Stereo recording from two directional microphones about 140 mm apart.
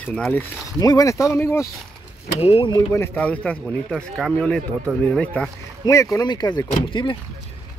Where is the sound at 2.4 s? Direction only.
40° left (ahead or behind).